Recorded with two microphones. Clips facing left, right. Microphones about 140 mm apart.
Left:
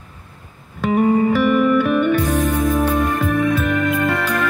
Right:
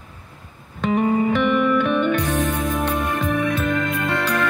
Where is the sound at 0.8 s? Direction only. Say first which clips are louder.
Left 3 dB; 5° left (ahead or behind).